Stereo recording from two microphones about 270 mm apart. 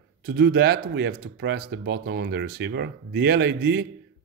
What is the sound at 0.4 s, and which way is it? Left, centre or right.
A man's voice, right.